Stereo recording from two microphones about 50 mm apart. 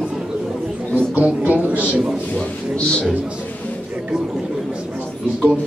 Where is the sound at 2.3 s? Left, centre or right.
Centre.